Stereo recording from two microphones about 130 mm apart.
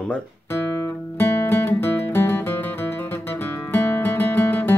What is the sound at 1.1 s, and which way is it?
Music, 15° left (ahead or behind).